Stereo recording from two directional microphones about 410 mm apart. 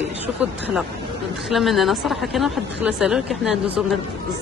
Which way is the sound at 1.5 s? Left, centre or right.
Centre.